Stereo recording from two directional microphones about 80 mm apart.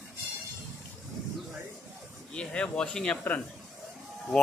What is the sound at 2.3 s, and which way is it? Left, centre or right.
Speech, centre.